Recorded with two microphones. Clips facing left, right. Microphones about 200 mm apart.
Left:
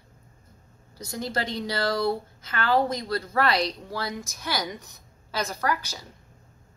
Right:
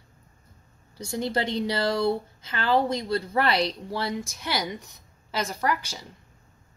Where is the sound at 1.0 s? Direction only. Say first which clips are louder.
Right 3 dB; 25° right (ahead or behind).